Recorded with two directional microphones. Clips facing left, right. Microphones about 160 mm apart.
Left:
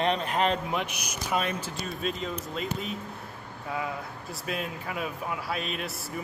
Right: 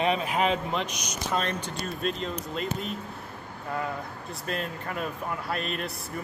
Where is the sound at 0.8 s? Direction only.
55° left (ahead or behind).